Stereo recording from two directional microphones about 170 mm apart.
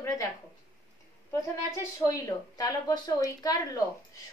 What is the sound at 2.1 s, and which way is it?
A woman's voice, 20° left (ahead or behind).